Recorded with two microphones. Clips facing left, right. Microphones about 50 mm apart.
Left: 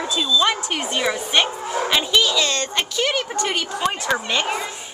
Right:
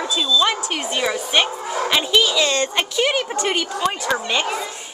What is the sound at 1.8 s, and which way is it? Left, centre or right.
A woman's voice, centre.